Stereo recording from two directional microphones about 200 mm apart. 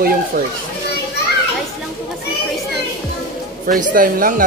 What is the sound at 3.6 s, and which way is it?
Speech, 45° right (ahead or behind).